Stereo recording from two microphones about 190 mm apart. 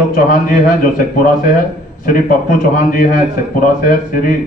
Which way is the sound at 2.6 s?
45° left (ahead or behind).